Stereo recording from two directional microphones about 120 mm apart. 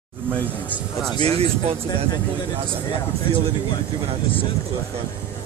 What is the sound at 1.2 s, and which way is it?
Speech, 55° right (ahead or behind).